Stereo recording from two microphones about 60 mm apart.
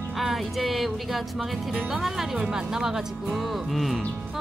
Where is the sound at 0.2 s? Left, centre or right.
Centre.